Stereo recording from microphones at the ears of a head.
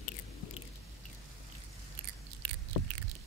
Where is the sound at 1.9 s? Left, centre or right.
Right.